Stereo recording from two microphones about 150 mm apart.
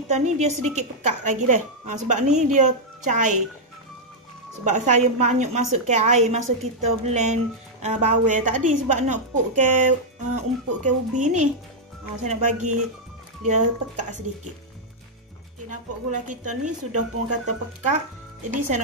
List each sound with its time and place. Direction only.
0.1 s a woman's voice: 50° right (ahead or behind)
4.6 s a woman's voice: 50° right (ahead or behind)
15.7 s speech: 55° right (ahead or behind)